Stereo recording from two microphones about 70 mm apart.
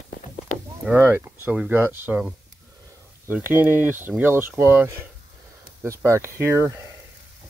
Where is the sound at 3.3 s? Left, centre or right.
Right.